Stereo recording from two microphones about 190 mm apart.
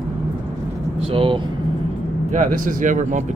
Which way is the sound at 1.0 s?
30° right (ahead or behind).